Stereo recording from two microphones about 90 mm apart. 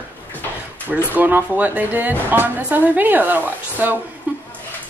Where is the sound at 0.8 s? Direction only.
20° right (ahead or behind).